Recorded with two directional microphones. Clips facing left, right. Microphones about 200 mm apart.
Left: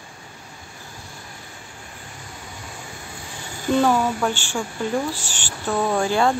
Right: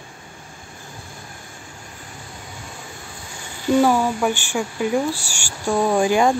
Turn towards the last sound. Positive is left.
turn(degrees=-15)  # may be behind; listen again after turning